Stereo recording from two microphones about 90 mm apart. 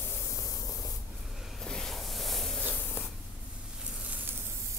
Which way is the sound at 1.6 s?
5° left (ahead or behind).